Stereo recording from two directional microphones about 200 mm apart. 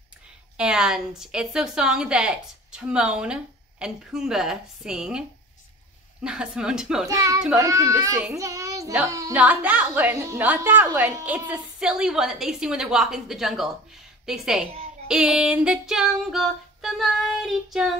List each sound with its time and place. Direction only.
0.6 s singing: 5° right (ahead or behind)
6.2 s singing: 5° right (ahead or behind)
7.1 s a child's voice: 15° right (ahead or behind); by 13.7 s centre (ahead or behind)
14.2 s singing: centre (ahead or behind)